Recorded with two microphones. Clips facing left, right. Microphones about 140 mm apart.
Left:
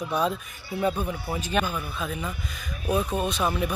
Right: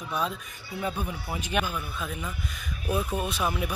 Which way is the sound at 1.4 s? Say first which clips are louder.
Left 2 dB; 10° right (ahead or behind).